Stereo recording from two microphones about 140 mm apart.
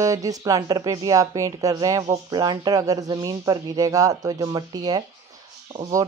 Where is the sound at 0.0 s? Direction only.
25° right (ahead or behind).